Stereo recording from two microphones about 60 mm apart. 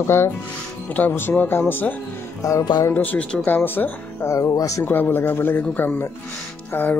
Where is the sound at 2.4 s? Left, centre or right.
Left.